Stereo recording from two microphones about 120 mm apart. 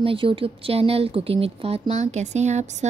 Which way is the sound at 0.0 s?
50° right (ahead or behind).